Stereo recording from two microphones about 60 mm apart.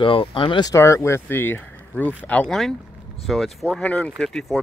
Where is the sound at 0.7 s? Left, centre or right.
Left.